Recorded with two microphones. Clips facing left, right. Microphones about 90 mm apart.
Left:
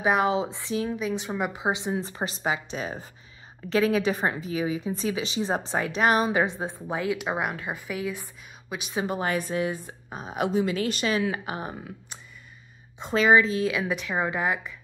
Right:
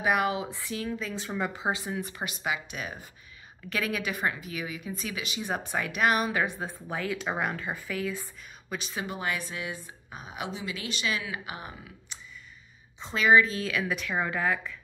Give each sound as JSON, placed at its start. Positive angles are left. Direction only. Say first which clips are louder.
{"t": 0.0, "sound": "a woman's voice", "louder": "left 4 dB", "side_deg": 25}
{"t": 9.0, "sound": "speech", "louder": "left 7 dB", "side_deg": 40}
{"t": 13.1, "sound": "a woman's voice", "louder": "left 2 dB", "side_deg": 30}